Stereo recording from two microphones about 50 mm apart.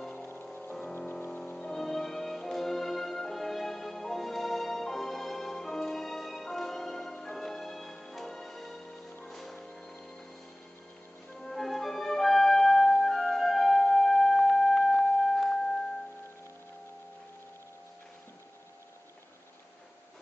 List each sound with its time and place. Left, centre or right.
1.3 s music: left
1.7 s music: centre
11.4 s music: centre